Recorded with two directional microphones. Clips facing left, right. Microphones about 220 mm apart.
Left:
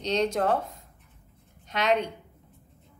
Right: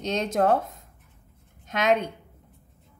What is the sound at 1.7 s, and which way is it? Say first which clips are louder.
Speech: right 2 dB; 50° right (ahead or behind).